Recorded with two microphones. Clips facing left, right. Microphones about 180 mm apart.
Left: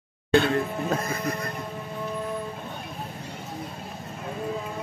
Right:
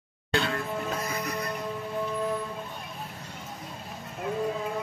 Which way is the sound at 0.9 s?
50° left (ahead or behind).